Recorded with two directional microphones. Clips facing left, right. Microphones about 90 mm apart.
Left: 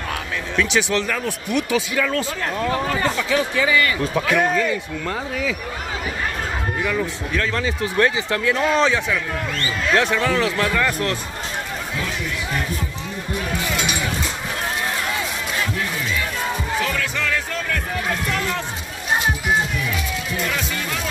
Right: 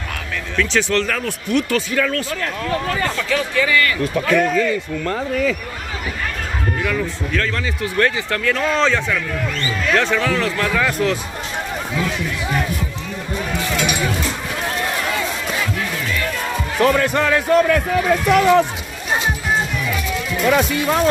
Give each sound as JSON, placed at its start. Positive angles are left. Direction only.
{"t": 0.7, "sound": "speech", "side_deg": 10}
{"t": 2.1, "sound": "speech", "side_deg": 20}
{"t": 6.8, "sound": "speech", "side_deg": 15}
{"t": 10.2, "sound": "speech", "side_deg": 20}
{"t": 10.6, "sound": "speech", "side_deg": 0}
{"t": 16.8, "sound": "speech", "side_deg": -50}
{"t": 18.3, "sound": "speech", "side_deg": -90}
{"t": 20.4, "sound": "speech", "side_deg": -65}